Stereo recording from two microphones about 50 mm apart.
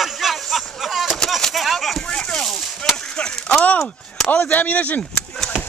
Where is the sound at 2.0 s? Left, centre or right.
Centre.